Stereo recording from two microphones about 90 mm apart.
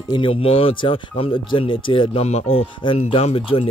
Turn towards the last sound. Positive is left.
turn(degrees=90)